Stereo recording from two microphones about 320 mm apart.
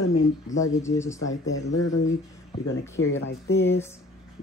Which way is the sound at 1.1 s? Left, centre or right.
Left.